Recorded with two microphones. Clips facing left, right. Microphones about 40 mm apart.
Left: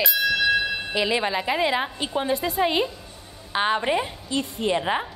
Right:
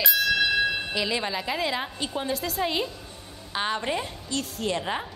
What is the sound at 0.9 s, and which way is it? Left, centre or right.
A woman's voice, centre.